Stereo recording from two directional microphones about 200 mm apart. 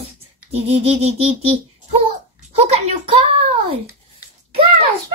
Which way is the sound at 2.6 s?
30° right (ahead or behind).